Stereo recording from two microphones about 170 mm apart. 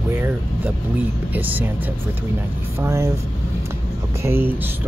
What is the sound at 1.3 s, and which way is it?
Speech, 10° right (ahead or behind).